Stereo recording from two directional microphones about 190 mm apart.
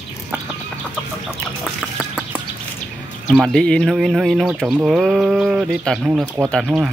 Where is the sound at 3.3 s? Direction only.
Centre (ahead or behind).